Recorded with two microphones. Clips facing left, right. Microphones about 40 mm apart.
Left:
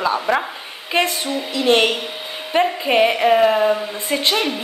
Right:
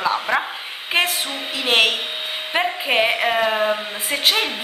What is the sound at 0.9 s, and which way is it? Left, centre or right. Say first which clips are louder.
Speech: left 2 dB; right.